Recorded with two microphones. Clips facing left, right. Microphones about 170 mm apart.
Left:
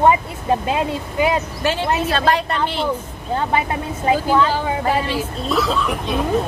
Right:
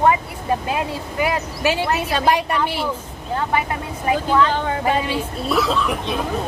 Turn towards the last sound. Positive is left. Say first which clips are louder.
# even
turn(degrees=0)  # may be behind; listen again after turning